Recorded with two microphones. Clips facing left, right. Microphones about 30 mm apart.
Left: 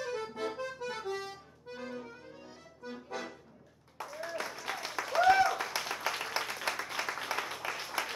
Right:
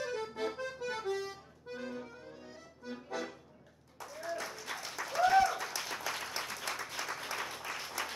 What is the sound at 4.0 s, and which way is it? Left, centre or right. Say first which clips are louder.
Applause: left 2 dB; left.